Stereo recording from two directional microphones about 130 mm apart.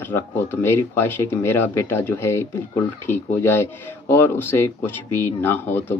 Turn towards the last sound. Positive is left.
turn(degrees=15)  # may be behind; listen again after turning